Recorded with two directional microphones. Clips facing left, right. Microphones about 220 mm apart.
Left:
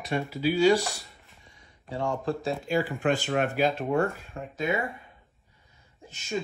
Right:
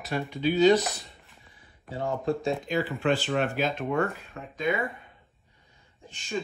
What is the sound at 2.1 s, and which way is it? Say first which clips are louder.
Speech: right 3 dB; centre (ahead or behind).